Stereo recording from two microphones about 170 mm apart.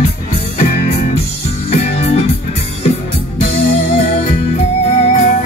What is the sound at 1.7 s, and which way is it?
Music, 40° left (ahead or behind).